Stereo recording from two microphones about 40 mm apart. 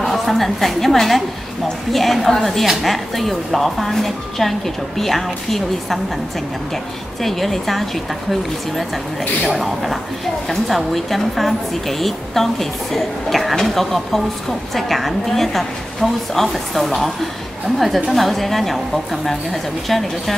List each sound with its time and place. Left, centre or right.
0.0 s a woman's voice: centre